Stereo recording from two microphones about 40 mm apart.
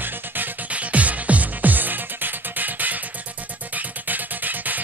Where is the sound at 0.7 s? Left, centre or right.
Right.